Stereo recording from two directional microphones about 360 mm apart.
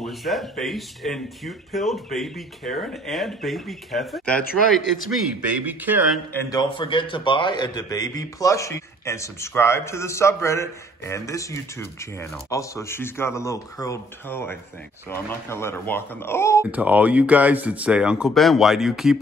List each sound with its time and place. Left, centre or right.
0.0 s speech: centre
5.7 s speech: centre
6.3 s a man's voice: centre
16.7 s speech: centre